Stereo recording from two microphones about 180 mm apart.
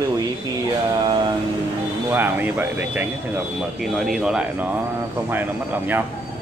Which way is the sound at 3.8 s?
Centre (ahead or behind).